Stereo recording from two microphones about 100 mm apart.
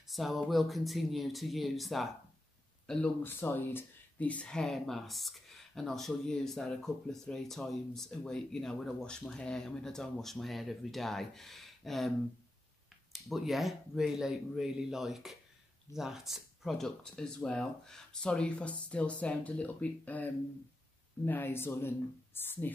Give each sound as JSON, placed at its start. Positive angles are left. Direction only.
{"t": 0.0, "sound": "speech", "side_deg": 0}
{"t": 3.2, "sound": "speech", "side_deg": 20}
{"t": 13.1, "sound": "a woman's voice", "side_deg": 0}